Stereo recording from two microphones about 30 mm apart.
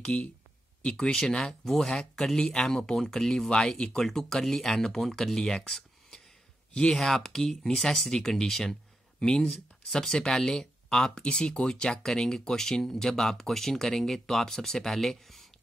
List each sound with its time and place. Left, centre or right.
0.8 s speech: left
1.7 s speech: centre
2.0 s speech: left
2.8 s speech: centre
3.4 s speech: left
4.0 s speech: centre
6.8 s speech: left
7.1 s speech: centre
11.2 s speech: left; by 15.4 s centre